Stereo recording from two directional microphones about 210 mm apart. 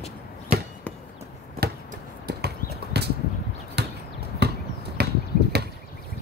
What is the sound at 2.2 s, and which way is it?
Clip-clop, 50° right (ahead or behind).